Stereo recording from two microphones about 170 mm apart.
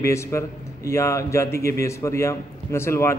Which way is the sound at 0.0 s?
15° left (ahead or behind).